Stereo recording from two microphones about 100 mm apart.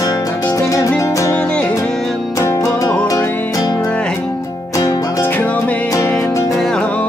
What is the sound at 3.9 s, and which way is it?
Music, 10° left (ahead or behind).